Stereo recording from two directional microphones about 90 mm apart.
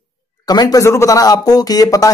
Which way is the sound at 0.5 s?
45° left (ahead or behind).